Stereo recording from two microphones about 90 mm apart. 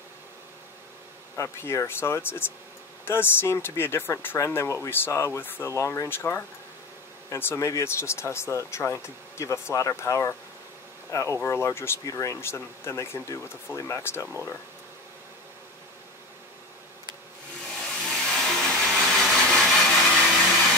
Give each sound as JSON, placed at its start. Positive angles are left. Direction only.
{"t": 1.3, "sound": "speech", "side_deg": 30}
{"t": 18.0, "sound": "hair dryer", "side_deg": 5}
{"t": 18.7, "sound": "a sound", "side_deg": 10}
{"t": 20.2, "sound": "hair dryer", "side_deg": -5}